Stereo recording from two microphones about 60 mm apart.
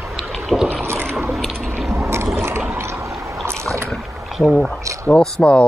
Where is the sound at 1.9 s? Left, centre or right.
Right.